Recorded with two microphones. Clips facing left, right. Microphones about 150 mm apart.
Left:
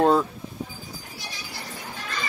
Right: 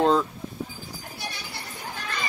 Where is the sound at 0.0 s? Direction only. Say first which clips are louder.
Left 2 dB; 10° left (ahead or behind).